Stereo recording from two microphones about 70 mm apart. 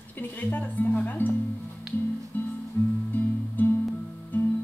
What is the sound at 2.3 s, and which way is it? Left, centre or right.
Music, left.